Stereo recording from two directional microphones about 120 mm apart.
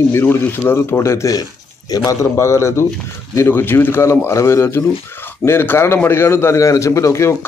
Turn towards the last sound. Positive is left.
turn(degrees=25)  # may be behind; listen again after turning